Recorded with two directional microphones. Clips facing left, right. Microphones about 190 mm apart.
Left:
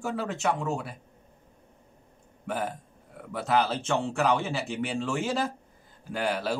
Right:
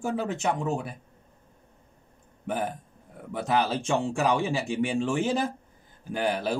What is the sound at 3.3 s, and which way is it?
Speech, 15° right (ahead or behind).